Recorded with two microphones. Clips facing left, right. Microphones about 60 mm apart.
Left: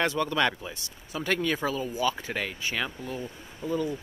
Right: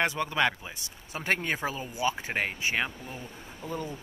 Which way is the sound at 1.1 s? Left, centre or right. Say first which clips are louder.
Left 2 dB; right.